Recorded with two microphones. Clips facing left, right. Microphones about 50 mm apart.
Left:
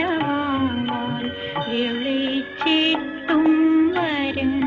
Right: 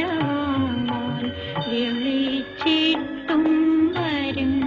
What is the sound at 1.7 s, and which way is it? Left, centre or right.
Music, left.